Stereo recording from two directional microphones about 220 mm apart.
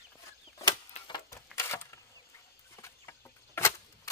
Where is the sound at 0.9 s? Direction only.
20° left (ahead or behind).